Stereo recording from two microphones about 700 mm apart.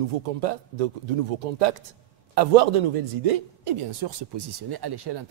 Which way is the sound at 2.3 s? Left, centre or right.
Right.